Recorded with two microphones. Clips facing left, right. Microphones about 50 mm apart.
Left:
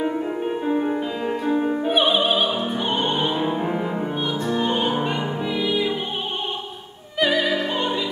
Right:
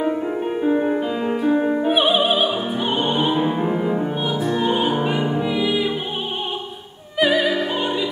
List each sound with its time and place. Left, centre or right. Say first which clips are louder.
0.0 s music: right 2 dB; centre
7.2 s music: right 2 dB; centre